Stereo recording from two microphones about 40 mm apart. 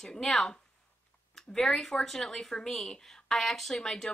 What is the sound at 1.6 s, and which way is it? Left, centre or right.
A woman's voice, centre.